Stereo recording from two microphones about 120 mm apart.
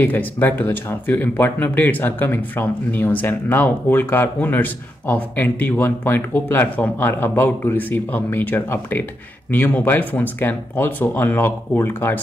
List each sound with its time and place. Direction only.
0.0 s speech: 15° left (ahead or behind)